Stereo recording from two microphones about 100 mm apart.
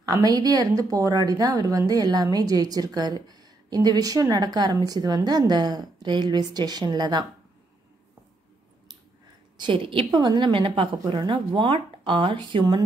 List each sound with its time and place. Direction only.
0.0 s a woman's voice: 40° right (ahead or behind)
9.6 s a woman's voice: 60° right (ahead or behind)